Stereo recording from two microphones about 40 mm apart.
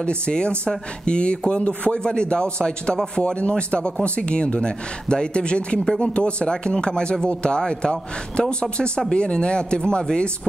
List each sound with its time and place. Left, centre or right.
0.0 s speech: left